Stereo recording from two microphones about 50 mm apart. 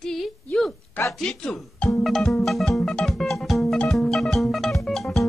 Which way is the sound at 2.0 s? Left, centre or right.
Centre.